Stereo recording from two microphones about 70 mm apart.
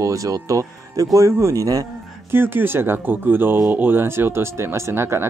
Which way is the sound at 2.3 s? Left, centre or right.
Right.